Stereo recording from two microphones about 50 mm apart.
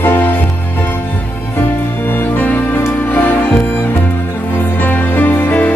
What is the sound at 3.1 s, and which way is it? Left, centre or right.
Music, left.